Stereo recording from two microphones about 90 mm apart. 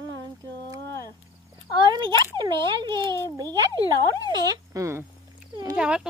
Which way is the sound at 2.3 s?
60° right (ahead or behind).